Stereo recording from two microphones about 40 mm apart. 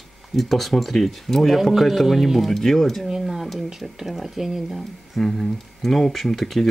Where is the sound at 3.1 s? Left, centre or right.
Centre.